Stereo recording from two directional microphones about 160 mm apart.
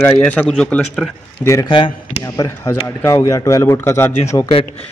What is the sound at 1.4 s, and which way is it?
Speech, 20° left (ahead or behind).